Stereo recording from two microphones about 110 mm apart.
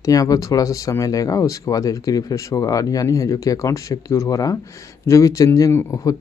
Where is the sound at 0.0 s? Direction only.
30° left (ahead or behind).